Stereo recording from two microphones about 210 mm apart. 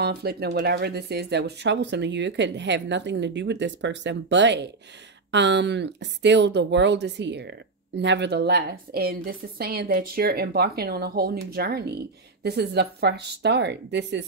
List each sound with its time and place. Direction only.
0.0 s speech: 50° right (ahead or behind)